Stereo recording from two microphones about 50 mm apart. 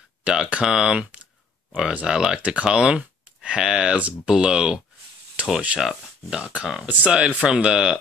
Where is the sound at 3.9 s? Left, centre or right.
Right.